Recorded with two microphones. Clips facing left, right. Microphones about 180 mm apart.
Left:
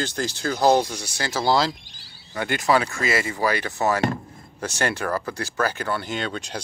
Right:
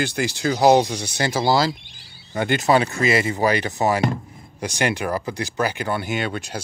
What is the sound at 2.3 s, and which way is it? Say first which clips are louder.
Speech: right 3 dB; 25° right (ahead or behind).